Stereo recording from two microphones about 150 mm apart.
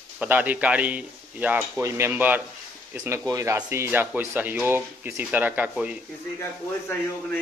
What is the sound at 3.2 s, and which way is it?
Speech, 20° right (ahead or behind).